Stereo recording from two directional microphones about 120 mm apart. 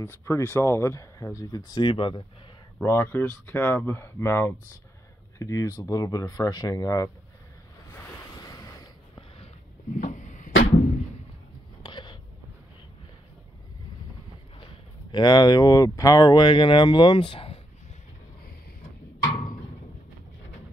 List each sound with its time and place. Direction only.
0.0 s speech: 20° left (ahead or behind)
1.7 s speech: 40° left (ahead or behind)
2.8 s speech: 20° left (ahead or behind)
8.4 s a sound: 30° left (ahead or behind)
9.9 s music: 90° left
11.8 s a sound: 40° left (ahead or behind)
14.6 s speech: 40° left (ahead or behind)